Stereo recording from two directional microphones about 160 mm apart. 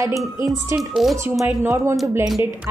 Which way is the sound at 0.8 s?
Centre (ahead or behind).